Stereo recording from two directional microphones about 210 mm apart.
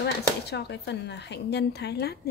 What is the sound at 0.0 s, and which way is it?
Speech, 55° left (ahead or behind).